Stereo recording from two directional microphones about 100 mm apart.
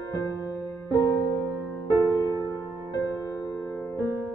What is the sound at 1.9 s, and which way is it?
Music, 35° left (ahead or behind).